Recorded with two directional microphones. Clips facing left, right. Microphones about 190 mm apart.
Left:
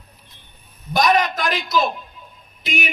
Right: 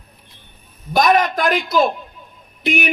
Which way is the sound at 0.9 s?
55° right (ahead or behind).